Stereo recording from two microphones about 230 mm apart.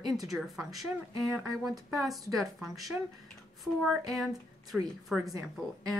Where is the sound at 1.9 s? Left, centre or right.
Centre.